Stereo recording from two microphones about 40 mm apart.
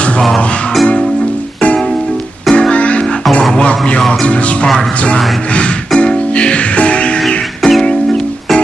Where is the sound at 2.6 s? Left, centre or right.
Left.